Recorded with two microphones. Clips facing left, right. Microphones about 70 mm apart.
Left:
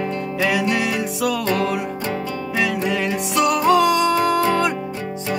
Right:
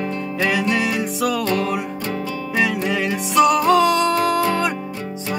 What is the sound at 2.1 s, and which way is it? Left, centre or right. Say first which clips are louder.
Music: even; left.